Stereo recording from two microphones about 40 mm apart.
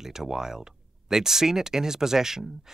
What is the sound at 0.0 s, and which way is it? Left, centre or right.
Speech, centre.